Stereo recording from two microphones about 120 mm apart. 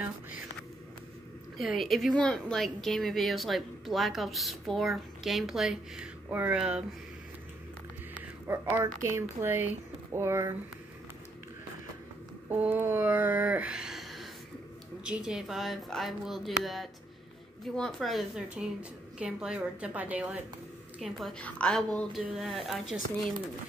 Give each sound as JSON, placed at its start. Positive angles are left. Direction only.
{"t": 1.6, "sound": "a woman's voice", "side_deg": 0}
{"t": 8.5, "sound": "speech", "side_deg": -20}
{"t": 12.4, "sound": "a sound", "side_deg": -15}
{"t": 15.0, "sound": "a woman's voice", "side_deg": -5}
{"t": 21.0, "sound": "a woman's voice", "side_deg": 0}